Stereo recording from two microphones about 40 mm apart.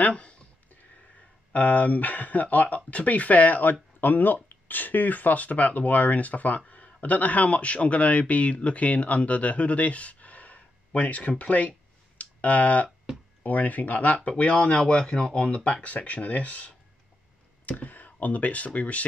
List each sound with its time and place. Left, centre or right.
0.0 s a sound: left
1.5 s speech: left
12.2 s clicking: left
13.4 s speech: left